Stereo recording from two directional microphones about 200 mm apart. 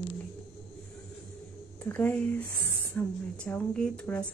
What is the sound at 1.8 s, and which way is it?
Speech, 10° left (ahead or behind).